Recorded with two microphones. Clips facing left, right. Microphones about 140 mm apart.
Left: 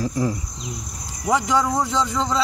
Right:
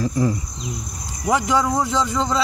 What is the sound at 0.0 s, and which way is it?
Cricket, 10° left (ahead or behind).